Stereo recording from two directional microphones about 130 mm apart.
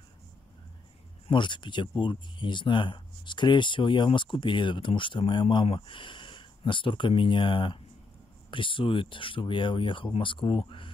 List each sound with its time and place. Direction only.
1.2 s speech: 40° left (ahead or behind)